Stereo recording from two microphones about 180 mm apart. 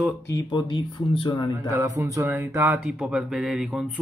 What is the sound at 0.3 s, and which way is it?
Speech, 25° left (ahead or behind).